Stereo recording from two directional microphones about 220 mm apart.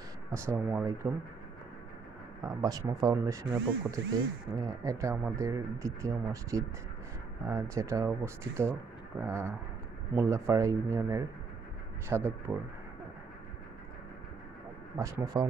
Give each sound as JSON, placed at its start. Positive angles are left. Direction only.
{"t": 0.3, "sound": "speech", "side_deg": -15}
{"t": 2.4, "sound": "speech", "side_deg": -15}
{"t": 15.0, "sound": "speech", "side_deg": -15}